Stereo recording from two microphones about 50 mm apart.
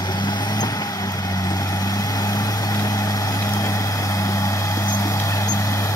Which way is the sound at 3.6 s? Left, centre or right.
Left.